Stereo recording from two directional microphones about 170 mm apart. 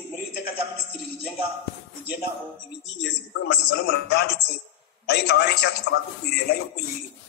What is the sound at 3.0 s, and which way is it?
A man's voice, 90° left.